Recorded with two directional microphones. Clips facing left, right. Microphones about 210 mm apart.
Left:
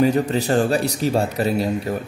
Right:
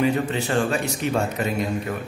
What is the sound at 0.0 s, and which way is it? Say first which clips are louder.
Speech: left 4 dB; 40° left (ahead or behind).